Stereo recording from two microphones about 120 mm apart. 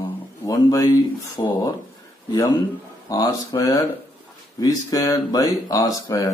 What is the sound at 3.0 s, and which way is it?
Speech, 30° left (ahead or behind).